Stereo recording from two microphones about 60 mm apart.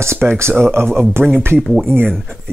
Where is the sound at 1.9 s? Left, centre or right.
Right.